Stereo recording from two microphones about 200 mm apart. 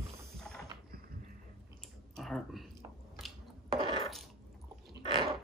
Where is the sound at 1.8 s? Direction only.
Centre (ahead or behind).